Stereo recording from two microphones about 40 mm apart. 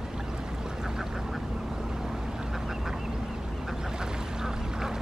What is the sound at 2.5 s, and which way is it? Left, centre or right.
Duck, centre.